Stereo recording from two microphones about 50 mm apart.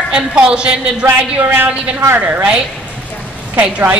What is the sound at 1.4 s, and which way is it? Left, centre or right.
Speech, right.